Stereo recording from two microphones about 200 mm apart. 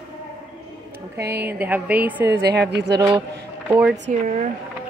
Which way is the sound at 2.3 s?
55° right (ahead or behind).